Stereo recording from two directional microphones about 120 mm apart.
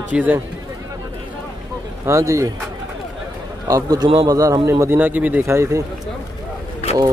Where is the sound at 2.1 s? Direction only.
25° right (ahead or behind).